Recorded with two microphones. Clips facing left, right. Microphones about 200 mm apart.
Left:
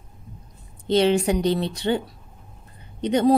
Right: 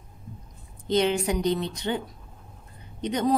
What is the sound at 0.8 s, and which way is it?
A woman's voice, 30° left (ahead or behind).